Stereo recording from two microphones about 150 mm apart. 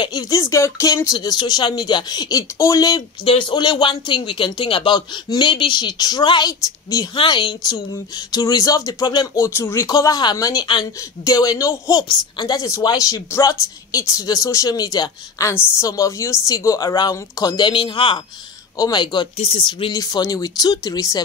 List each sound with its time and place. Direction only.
0.0 s speech: 25° left (ahead or behind)
3.3 s speech: 35° left (ahead or behind)
19.3 s speech: 45° left (ahead or behind)
19.9 s speech: 25° left (ahead or behind)